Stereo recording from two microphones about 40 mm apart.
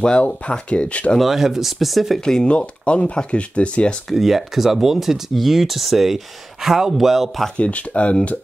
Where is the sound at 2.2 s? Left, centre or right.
Centre.